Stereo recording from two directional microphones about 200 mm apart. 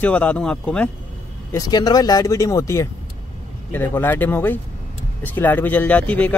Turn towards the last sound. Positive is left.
turn(degrees=5)  # may be behind; listen again after turning